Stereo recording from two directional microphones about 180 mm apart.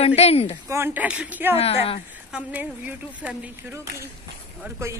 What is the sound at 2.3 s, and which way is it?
Speech, 5° right (ahead or behind).